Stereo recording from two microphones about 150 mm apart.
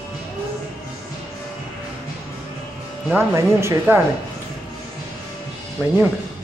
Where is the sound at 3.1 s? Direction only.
20° right (ahead or behind).